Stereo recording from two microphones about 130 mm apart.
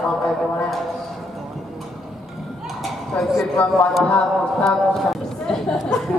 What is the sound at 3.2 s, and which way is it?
Speech, 5° right (ahead or behind).